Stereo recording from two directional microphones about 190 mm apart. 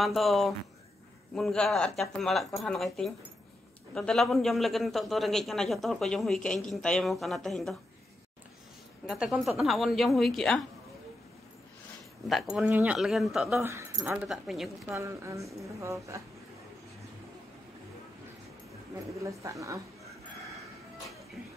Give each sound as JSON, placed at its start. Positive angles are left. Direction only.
{"t": 0.0, "sound": "a man's voice", "side_deg": 0}
{"t": 9.0, "sound": "a man's voice", "side_deg": 0}
{"t": 12.3, "sound": "a man's voice", "side_deg": 0}
{"t": 13.6, "sound": "a man's voice", "side_deg": -15}
{"t": 15.0, "sound": "a woman's voice", "side_deg": -15}
{"t": 19.2, "sound": "a woman's voice", "side_deg": -15}